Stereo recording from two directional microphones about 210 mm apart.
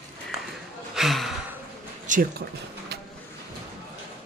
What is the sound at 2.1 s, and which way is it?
Speech, 45° right (ahead or behind).